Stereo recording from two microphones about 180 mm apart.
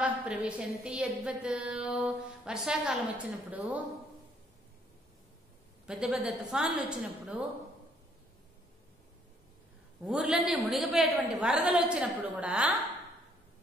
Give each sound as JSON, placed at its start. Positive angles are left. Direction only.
{"t": 0.0, "sound": "a woman's voice", "side_deg": -5}
{"t": 5.9, "sound": "a woman's voice", "side_deg": -5}
{"t": 10.0, "sound": "a woman's voice", "side_deg": 0}